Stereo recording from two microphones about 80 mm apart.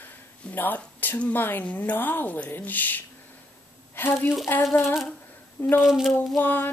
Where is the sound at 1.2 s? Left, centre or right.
Left.